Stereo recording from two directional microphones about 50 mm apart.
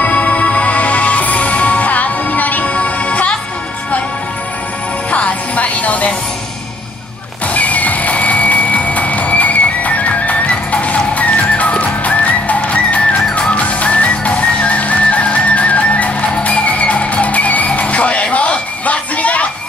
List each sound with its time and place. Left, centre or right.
0.0 s music: left
5.1 s music: left
7.5 s music: left